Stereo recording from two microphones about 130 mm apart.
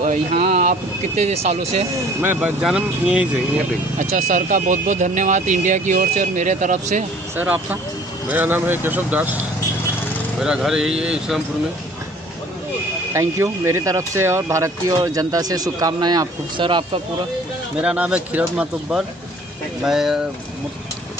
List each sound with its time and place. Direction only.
0.0 s speech: 80° right; by 1.9 s 55° right (ahead or behind)
2.6 s speech: 5° right (ahead or behind)
4.0 s speech: 75° right (ahead or behind)
7.3 s speech: 15° right (ahead or behind)
10.4 s speech: 5° right (ahead or behind)
13.1 s speech: 25° right (ahead or behind); by 17.0 s 40° right (ahead or behind)
17.7 s speech: 10° right (ahead or behind)